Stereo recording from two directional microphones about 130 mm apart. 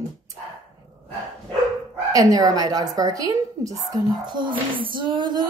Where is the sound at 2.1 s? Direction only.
25° right (ahead or behind).